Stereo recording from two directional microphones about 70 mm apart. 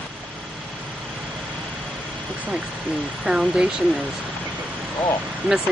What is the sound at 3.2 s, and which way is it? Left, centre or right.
Speech, centre.